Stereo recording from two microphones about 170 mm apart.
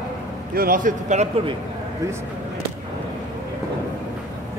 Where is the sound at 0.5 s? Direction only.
55° right (ahead or behind).